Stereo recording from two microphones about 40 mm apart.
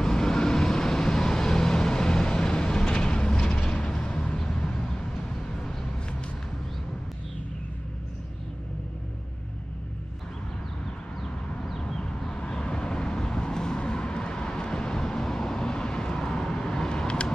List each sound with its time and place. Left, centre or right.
0.0 s vehicle: centre
11.8 s a sound: left
12.3 s vehicle: left